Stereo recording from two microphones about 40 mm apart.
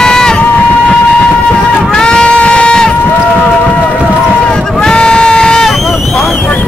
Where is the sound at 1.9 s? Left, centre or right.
Left.